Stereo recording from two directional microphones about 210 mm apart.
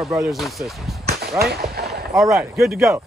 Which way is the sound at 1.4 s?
50° right (ahead or behind).